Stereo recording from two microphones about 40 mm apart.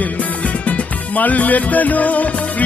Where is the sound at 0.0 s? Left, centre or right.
Left.